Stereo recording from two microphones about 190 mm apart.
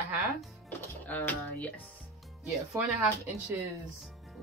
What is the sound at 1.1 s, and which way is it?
Speech, 10° left (ahead or behind).